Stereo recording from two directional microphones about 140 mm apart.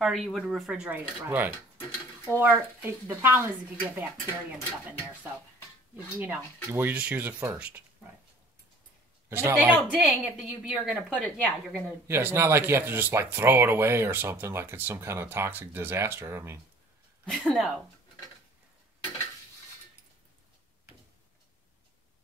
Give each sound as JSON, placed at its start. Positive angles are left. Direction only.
{"t": 0.0, "sound": "a woman's voice", "side_deg": 0}
{"t": 6.1, "sound": "speech", "side_deg": -15}
{"t": 9.6, "sound": "a woman's voice", "side_deg": -5}
{"t": 11.1, "sound": "a woman's voice", "side_deg": 10}
{"t": 12.1, "sound": "speech", "side_deg": -20}
{"t": 17.3, "sound": "a woman's voice", "side_deg": 5}